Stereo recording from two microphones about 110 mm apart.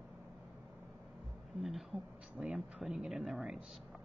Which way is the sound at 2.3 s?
5° right (ahead or behind).